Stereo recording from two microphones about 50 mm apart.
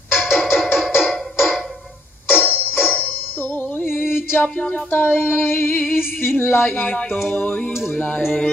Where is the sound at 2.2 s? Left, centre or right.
Left.